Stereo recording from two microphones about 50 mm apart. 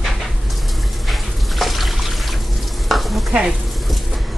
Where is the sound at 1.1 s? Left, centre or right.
Centre.